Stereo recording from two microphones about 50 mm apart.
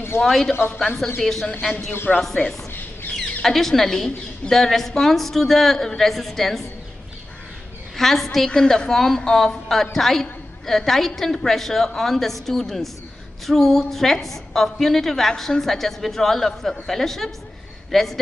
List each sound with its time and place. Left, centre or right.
0.1 s a woman's voice: left
0.7 s a woman's voice: centre
2.1 s a woman's voice: centre
2.7 s a sound: left
3.4 s a woman's voice: centre
7.9 s a woman's voice: centre